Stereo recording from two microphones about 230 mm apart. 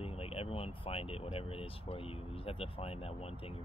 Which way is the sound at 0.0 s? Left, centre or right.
Left.